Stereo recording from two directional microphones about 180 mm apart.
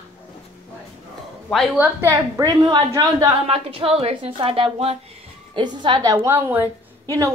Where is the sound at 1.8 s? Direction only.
15° right (ahead or behind).